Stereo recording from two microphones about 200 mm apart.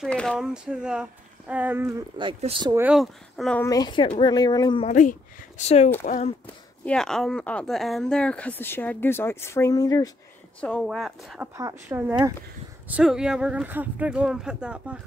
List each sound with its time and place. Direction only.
0.0 s speech: 5° left (ahead or behind); by 2.0 s 10° right (ahead or behind)
2.1 s speech: 25° right (ahead or behind)
2.8 s speech: centre (ahead or behind)
3.6 s speech: 20° left (ahead or behind)
4.8 s speech: 40° left (ahead or behind)
6.4 s speech: 5° left (ahead or behind)
10.6 s speech: 5° left (ahead or behind)
11.5 s speech: 15° right (ahead or behind)
12.8 s speech: 5° right (ahead or behind)